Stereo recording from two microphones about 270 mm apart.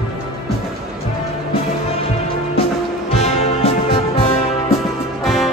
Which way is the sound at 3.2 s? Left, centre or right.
Left.